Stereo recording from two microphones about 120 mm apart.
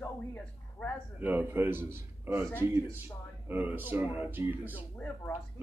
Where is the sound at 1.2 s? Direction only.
15° right (ahead or behind).